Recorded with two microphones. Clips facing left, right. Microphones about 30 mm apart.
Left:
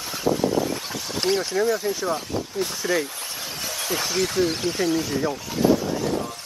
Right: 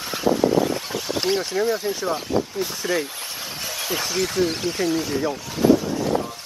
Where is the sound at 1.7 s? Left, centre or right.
Centre.